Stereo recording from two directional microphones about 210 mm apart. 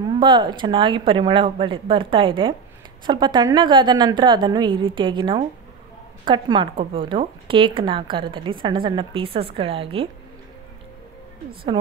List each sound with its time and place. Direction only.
0.2 s speech: 20° right (ahead or behind)